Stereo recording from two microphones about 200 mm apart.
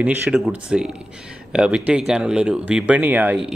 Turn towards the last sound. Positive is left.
turn(degrees=-5)  # may be behind; listen again after turning